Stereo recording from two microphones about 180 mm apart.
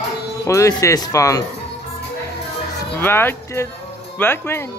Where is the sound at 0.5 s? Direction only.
20° left (ahead or behind).